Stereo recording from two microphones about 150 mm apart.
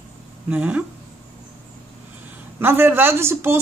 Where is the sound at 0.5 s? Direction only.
10° right (ahead or behind).